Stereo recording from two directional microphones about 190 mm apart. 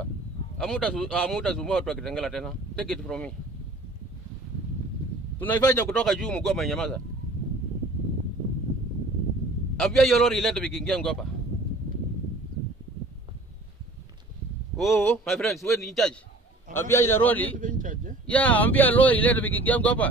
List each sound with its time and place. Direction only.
0.6 s speech: 5° left (ahead or behind)
5.4 s speech: 10° left (ahead or behind)
9.8 s speech: centre (ahead or behind)
14.8 s speech: centre (ahead or behind)
16.7 s speech: 15° left (ahead or behind)
17.6 s speech: 45° right (ahead or behind)
18.2 s speech: 5° left (ahead or behind)